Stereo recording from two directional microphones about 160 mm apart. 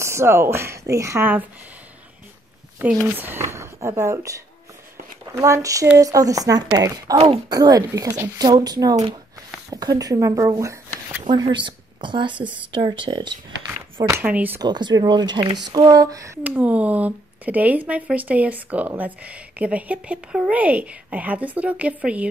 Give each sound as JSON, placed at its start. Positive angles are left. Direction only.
{"t": 0.0, "sound": "speech", "side_deg": -15}
{"t": 3.0, "sound": "speech", "side_deg": -15}
{"t": 11.2, "sound": "speech", "side_deg": -30}
{"t": 14.0, "sound": "speech", "side_deg": -15}
{"t": 14.6, "sound": "speech", "side_deg": -30}
{"t": 16.4, "sound": "speech", "side_deg": -10}